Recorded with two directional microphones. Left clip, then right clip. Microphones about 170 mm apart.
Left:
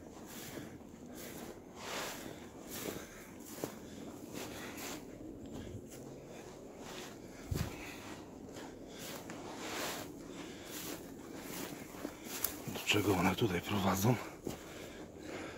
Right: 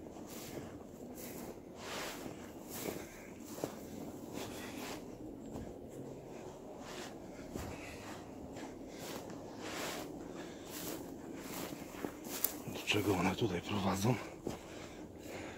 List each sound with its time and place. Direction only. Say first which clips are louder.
12.7 s speech: left 2 dB; 25° left (ahead or behind)